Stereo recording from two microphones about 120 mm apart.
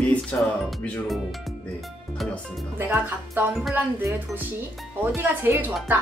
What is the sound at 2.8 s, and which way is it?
Speech, 15° right (ahead or behind).